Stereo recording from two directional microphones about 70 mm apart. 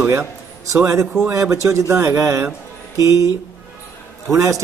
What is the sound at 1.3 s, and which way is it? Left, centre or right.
A man's voice, right.